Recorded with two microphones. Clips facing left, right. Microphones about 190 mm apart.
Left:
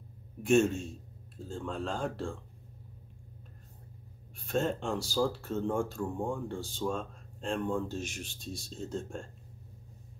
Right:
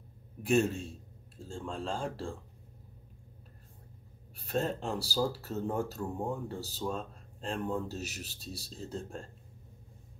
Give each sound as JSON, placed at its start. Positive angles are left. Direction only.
{"t": 0.4, "sound": "speech", "side_deg": -5}
{"t": 4.6, "sound": "speech", "side_deg": -35}
{"t": 5.1, "sound": "speech", "side_deg": -5}